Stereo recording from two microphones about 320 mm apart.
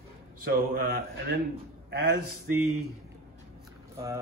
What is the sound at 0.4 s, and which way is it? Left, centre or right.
Speech, right.